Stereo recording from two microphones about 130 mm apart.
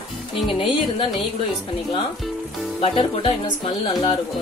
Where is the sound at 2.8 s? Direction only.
45° left (ahead or behind).